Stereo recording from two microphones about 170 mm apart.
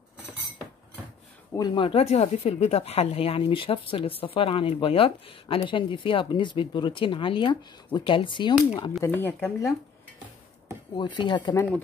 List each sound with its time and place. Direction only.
1.5 s speech: 25° left (ahead or behind)
9.0 s speech: 10° left (ahead or behind)
11.0 s speech: 25° left (ahead or behind)